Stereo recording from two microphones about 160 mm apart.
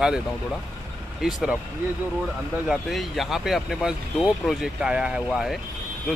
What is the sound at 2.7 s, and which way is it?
Speech, centre (ahead or behind).